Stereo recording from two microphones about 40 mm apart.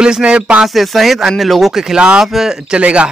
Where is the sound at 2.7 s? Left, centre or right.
Right.